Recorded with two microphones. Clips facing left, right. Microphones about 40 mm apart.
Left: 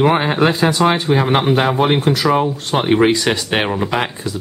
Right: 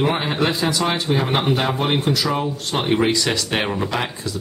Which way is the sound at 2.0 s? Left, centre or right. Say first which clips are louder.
Left 6 dB; left.